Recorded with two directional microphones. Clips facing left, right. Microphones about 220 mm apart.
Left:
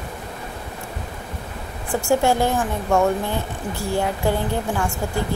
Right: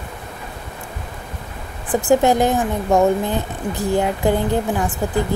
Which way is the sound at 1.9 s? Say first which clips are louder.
Right 4 dB; 20° right (ahead or behind).